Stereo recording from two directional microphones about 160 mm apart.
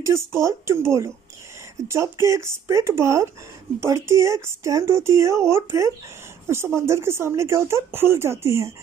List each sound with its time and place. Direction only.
0.0 s speech: 15° right (ahead or behind)